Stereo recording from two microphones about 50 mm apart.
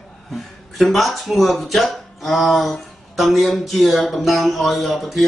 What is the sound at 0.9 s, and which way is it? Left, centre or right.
Speech, centre.